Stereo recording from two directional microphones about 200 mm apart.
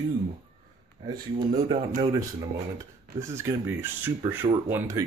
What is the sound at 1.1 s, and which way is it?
Speech, 20° right (ahead or behind).